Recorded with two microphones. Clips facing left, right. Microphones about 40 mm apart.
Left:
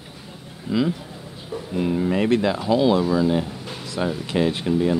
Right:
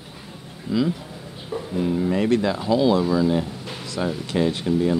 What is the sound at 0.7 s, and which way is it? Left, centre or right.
Speech, left.